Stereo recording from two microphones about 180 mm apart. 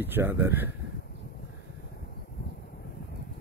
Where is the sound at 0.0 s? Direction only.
10° right (ahead or behind).